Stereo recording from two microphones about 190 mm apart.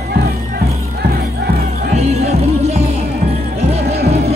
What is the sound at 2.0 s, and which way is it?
Music, 35° right (ahead or behind).